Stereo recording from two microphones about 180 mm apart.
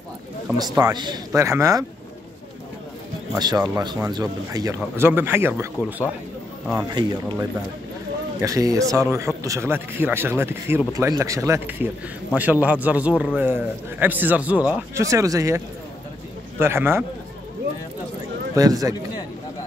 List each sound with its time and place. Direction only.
0.5 s a man's voice: 20° right (ahead or behind)
3.3 s speech: 25° right (ahead or behind)
6.9 s a man's voice: 25° right (ahead or behind)
18.6 s a man's voice: 20° right (ahead or behind)